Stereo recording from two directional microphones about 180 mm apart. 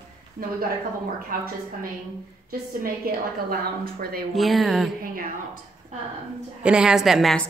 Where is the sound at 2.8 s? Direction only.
55° right (ahead or behind).